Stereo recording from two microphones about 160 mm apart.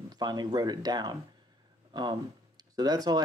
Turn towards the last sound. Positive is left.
turn(degrees=-25)  # may be behind; listen again after turning